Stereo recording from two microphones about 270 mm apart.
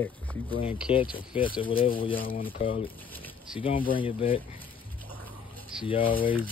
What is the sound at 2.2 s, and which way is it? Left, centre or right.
Speech, left.